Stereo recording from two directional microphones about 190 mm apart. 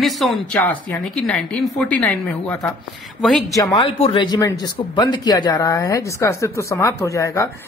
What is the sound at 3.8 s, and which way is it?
A woman's voice, 30° left (ahead or behind).